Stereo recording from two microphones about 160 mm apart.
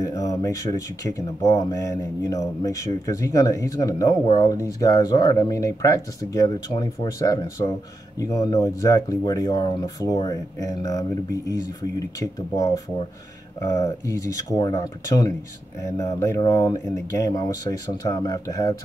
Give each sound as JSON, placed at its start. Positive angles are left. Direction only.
{"t": 0.0, "sound": "speech", "side_deg": 20}